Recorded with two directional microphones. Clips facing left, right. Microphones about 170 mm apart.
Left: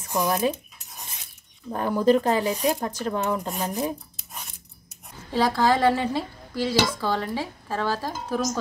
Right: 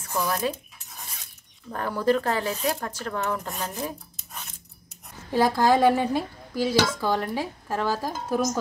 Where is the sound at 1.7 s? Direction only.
15° left (ahead or behind).